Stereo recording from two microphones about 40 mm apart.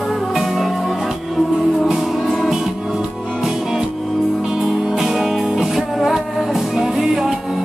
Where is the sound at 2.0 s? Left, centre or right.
Centre.